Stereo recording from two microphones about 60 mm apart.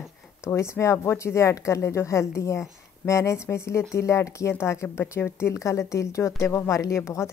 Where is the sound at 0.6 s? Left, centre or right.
Left.